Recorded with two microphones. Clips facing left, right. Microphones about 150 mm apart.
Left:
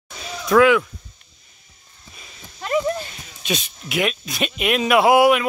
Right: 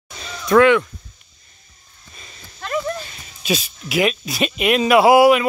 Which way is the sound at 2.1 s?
5° left (ahead or behind).